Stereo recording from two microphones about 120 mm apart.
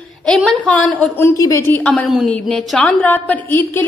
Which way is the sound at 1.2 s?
25° left (ahead or behind).